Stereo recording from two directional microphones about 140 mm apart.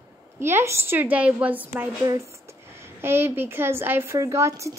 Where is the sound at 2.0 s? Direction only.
20° right (ahead or behind).